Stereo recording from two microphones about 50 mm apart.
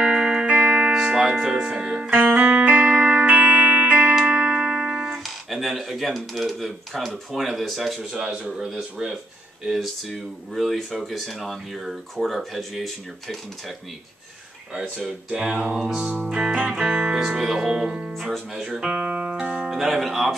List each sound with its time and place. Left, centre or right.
0.0 s music: right
0.9 s music: centre
1.6 s music: centre
2.0 s music: right
4.3 s music: centre
5.1 s speech: centre
14.7 s speech: centre
16.3 s music: centre
16.7 s speech: centre
18.8 s music: centre
19.6 s speech: centre